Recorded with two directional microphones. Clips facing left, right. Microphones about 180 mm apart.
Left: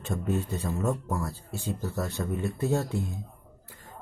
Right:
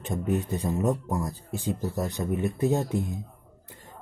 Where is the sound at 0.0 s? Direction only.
20° right (ahead or behind).